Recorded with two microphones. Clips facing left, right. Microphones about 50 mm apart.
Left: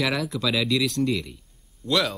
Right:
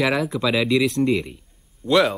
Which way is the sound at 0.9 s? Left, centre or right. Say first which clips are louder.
Right 5 dB; right.